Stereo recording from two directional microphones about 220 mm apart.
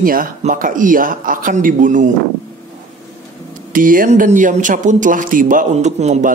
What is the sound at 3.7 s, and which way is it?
A man's voice, 40° right (ahead or behind).